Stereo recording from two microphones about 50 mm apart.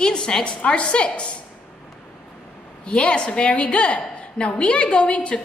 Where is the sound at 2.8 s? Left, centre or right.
Left.